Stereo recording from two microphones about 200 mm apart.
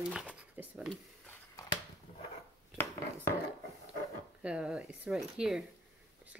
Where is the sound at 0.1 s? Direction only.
5° right (ahead or behind).